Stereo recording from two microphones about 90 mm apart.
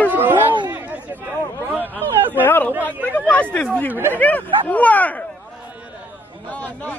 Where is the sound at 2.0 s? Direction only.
25° right (ahead or behind).